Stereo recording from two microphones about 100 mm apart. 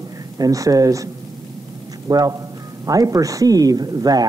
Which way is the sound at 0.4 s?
35° right (ahead or behind).